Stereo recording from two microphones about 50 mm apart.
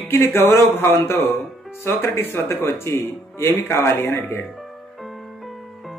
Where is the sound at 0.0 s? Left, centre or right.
Left.